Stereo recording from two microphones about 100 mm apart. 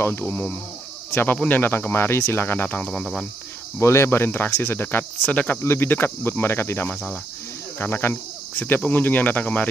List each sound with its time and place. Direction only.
0.0 s speech: 25° left (ahead or behind); by 3.3 s 5° left (ahead or behind)
3.8 s speech: 30° left (ahead or behind)
5.6 s speech: 25° left (ahead or behind)